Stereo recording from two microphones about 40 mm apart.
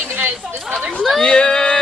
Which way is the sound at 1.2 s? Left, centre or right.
Left.